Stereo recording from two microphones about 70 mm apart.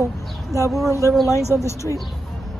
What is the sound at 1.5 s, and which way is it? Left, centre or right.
Speech, left.